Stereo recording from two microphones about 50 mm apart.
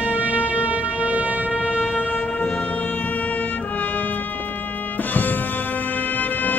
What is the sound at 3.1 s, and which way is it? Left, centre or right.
Music, left.